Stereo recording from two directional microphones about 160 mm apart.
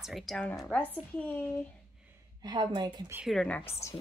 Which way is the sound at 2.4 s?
25° right (ahead or behind).